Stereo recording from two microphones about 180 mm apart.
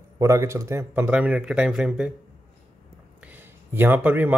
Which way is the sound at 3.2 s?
10° right (ahead or behind).